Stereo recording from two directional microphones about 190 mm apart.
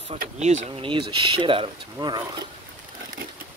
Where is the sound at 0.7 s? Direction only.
30° right (ahead or behind).